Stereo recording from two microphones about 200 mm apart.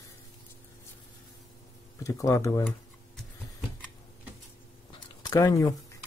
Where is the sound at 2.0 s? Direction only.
15° left (ahead or behind).